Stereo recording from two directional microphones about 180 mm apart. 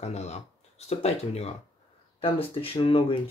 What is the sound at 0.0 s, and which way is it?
Speech, 35° left (ahead or behind).